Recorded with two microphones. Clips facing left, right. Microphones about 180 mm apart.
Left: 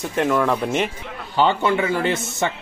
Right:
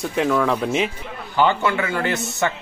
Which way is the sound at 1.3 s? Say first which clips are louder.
Left 1 dB; 25° left (ahead or behind).